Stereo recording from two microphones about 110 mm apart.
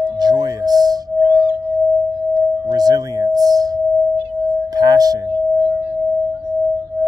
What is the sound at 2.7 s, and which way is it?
Singing bowl, 35° right (ahead or behind).